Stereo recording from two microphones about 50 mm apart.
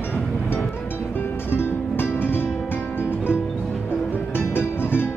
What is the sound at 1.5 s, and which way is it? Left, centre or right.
Music, left.